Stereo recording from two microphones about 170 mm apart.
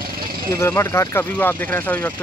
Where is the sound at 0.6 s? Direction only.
15° left (ahead or behind).